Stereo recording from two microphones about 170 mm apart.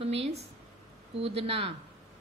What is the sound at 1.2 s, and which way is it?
Speech, 35° right (ahead or behind).